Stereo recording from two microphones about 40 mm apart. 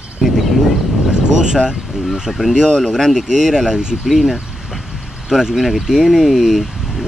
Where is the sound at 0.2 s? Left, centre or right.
Centre.